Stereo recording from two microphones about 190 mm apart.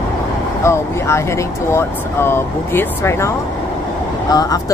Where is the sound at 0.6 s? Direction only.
15° left (ahead or behind).